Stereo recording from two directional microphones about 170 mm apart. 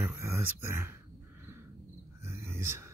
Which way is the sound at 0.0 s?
15° right (ahead or behind).